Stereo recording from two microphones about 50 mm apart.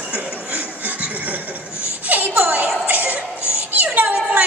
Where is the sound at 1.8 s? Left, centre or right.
Right.